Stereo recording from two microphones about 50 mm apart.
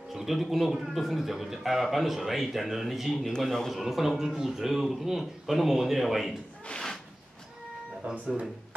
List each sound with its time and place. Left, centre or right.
0.1 s a man's voice: centre
3.7 s a man's voice: centre
8.0 s speech: right